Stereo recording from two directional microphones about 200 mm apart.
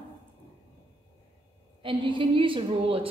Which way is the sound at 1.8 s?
25° right (ahead or behind).